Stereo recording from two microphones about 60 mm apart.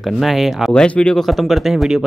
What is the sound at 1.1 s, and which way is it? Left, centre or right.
Speech, centre.